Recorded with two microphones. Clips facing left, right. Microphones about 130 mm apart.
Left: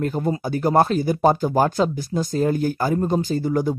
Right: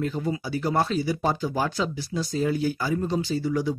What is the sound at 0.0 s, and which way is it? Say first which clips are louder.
Speech: left 4 dB; 50° left (ahead or behind).